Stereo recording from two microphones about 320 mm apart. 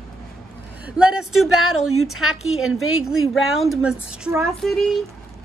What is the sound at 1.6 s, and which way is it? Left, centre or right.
Speech, left.